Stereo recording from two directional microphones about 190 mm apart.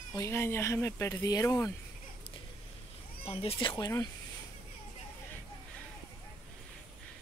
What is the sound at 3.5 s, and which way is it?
Speech, 20° left (ahead or behind).